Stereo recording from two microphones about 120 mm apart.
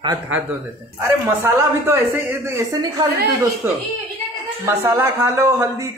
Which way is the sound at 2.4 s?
20° right (ahead or behind).